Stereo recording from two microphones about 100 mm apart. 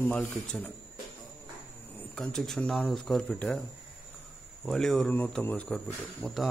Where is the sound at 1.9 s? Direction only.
15° left (ahead or behind).